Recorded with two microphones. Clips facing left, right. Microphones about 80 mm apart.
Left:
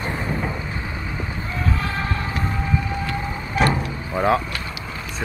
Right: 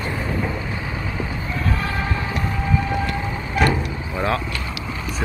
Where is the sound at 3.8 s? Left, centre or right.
Centre.